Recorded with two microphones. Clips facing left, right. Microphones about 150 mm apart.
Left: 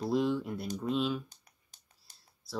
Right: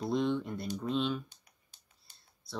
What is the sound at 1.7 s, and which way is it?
Typing, 40° left (ahead or behind).